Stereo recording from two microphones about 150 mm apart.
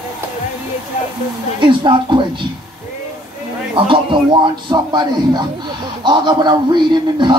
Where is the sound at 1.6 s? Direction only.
30° right (ahead or behind).